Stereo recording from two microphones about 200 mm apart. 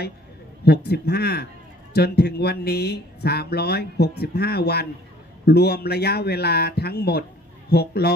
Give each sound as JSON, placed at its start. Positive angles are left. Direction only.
{"t": 0.7, "sound": "a man's voice", "side_deg": 55}